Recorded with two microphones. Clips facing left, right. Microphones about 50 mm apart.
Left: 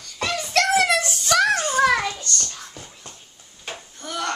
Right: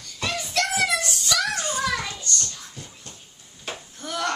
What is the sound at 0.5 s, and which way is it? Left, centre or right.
Child singing, left.